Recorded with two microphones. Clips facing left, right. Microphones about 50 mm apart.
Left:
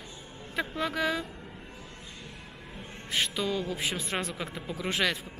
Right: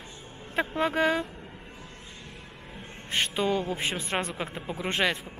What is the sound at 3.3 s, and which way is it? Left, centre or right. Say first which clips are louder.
Speech: right 4 dB; right.